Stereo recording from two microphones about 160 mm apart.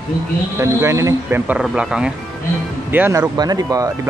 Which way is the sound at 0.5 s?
20° right (ahead or behind).